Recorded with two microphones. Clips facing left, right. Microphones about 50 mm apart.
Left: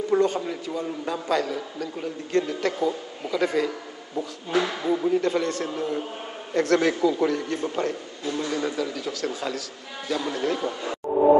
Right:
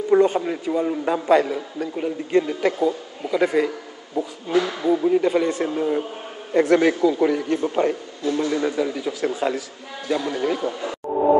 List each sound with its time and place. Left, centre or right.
0.1 s a man's voice: centre
4.6 s speech: centre
5.1 s a man's voice: centre